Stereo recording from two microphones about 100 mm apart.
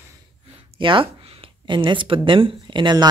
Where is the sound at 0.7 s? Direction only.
60° right (ahead or behind).